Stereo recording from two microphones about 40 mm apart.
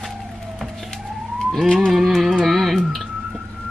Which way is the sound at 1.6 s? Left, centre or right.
Centre.